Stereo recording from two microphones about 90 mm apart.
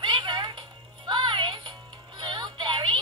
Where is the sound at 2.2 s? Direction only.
55° right (ahead or behind).